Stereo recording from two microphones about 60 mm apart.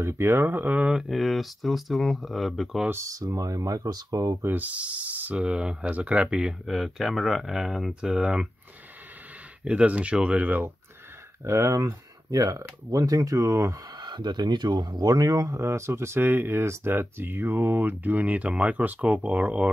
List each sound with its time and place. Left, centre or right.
0.0 s speech: right
0.7 s speech: centre
1.0 s speech: centre
3.3 s speech: right
4.6 s speech: right
9.7 s speech: right
11.4 s speech: right
11.7 s speech: right
14.9 s speech: right
15.6 s speech: right